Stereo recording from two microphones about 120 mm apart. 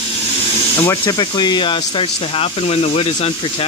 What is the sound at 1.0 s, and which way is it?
Speech, 35° left (ahead or behind).